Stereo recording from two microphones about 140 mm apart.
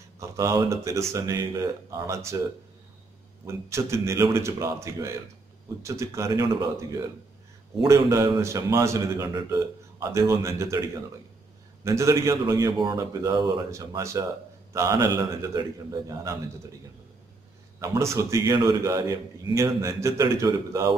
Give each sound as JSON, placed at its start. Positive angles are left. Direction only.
{"t": 0.2, "sound": "a man's voice", "side_deg": -20}
{"t": 3.4, "sound": "a man's voice", "side_deg": -20}
{"t": 7.9, "sound": "a man's voice", "side_deg": -20}
{"t": 11.8, "sound": "a man's voice", "side_deg": -20}
{"t": 17.7, "sound": "a man's voice", "side_deg": -20}